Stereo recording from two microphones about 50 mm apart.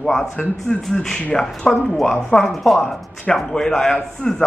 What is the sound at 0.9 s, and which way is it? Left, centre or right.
Speech, centre.